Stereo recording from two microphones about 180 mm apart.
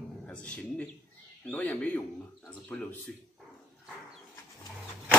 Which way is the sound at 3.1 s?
5° left (ahead or behind).